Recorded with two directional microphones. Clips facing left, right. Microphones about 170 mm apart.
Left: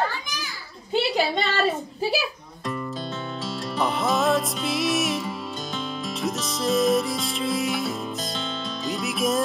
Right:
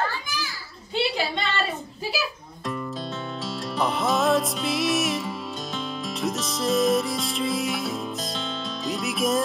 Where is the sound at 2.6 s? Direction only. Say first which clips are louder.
Left 1 dB; centre (ahead or behind).